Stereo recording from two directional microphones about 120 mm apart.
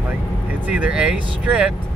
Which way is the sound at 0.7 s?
10° right (ahead or behind).